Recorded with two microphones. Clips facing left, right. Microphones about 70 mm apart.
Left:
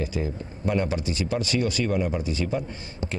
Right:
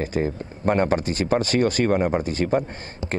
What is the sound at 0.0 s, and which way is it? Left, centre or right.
Speech, right.